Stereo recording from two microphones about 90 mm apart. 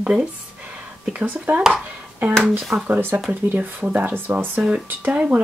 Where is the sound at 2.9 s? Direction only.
25° right (ahead or behind).